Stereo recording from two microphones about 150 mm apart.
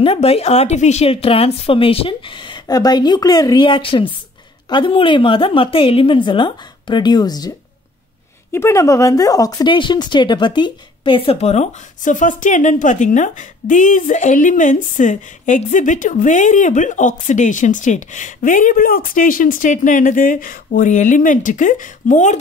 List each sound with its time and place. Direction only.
0.0 s speech: 40° left (ahead or behind); by 22.4 s 55° left (ahead or behind)